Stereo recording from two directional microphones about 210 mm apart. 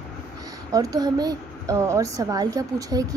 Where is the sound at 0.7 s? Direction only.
15° right (ahead or behind).